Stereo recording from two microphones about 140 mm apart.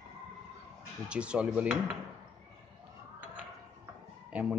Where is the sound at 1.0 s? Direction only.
5° right (ahead or behind).